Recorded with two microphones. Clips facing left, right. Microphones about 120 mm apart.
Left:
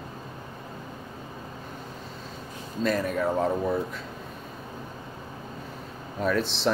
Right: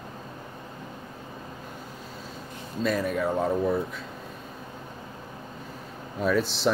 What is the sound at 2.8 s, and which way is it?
Speech, centre (ahead or behind).